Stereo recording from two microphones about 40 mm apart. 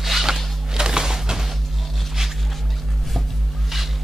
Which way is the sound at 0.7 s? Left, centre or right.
Centre.